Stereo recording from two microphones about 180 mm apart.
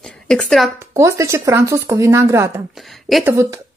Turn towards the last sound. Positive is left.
turn(degrees=-15)  # may be behind; listen again after turning